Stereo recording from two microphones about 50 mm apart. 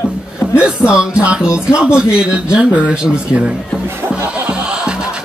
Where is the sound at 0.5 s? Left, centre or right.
Centre.